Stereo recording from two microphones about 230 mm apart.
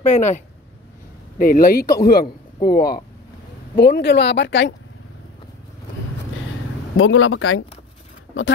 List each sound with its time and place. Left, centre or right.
0.0 s speech: left
1.4 s speech: left
7.0 s speech: left